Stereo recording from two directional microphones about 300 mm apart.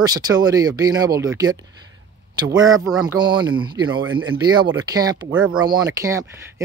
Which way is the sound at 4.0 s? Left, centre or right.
Right.